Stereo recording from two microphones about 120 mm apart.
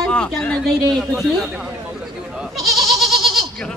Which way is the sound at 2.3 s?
Centre (ahead or behind).